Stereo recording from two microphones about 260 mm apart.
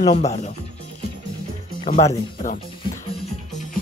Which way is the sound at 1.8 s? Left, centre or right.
Left.